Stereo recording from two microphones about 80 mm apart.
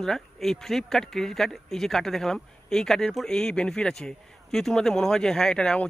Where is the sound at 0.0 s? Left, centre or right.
Centre.